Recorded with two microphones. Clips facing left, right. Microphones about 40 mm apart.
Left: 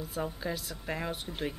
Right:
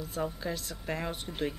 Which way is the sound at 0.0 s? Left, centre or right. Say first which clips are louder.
Right 1 dB; centre.